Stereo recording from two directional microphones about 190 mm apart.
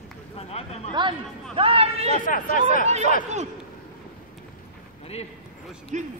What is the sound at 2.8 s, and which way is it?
Speech, 35° right (ahead or behind).